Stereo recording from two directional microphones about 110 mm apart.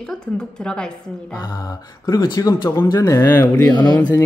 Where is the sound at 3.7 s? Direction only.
40° left (ahead or behind).